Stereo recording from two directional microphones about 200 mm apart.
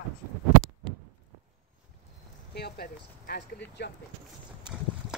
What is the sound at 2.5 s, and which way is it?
Speech, 50° left (ahead or behind).